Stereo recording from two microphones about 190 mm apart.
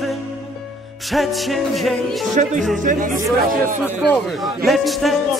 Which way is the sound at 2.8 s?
45° right (ahead or behind).